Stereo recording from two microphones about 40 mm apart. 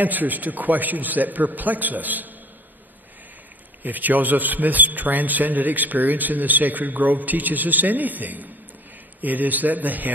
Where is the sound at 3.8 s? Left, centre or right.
Right.